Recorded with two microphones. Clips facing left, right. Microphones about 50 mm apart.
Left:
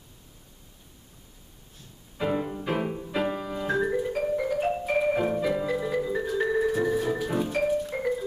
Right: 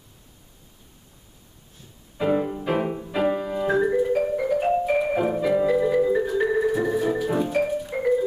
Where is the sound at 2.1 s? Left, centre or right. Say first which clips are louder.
Right 5 dB; centre.